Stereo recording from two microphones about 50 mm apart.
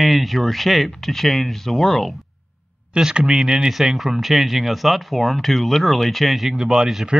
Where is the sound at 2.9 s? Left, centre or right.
Centre.